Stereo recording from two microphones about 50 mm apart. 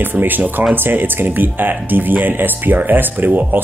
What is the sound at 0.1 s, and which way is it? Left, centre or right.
Speech, right.